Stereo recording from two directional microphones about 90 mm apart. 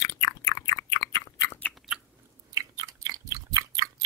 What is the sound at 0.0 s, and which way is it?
Chewing, 40° left (ahead or behind).